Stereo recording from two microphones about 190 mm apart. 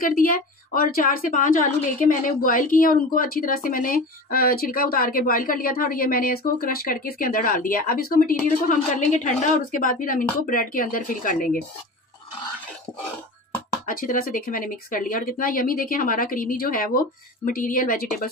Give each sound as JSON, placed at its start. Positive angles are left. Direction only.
{"t": 0.0, "sound": "a woman's voice", "side_deg": 50}
{"t": 8.6, "sound": "a woman's voice", "side_deg": 40}
{"t": 13.8, "sound": "a woman's voice", "side_deg": 45}